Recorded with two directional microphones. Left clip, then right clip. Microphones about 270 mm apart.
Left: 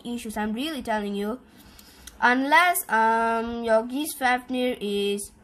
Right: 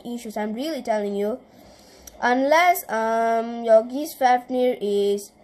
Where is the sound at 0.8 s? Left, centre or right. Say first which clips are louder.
Right 6 dB; centre.